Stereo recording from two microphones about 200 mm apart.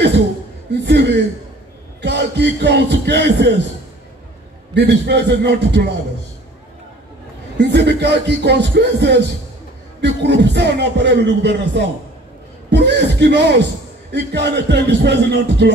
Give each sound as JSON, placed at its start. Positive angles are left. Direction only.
{"t": 0.7, "sound": "a man's voice", "side_deg": -60}
{"t": 4.7, "sound": "speech", "side_deg": -60}
{"t": 7.5, "sound": "a man's voice", "side_deg": -60}